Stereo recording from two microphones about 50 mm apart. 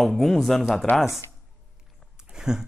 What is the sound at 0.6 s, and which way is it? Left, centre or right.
Speech, centre.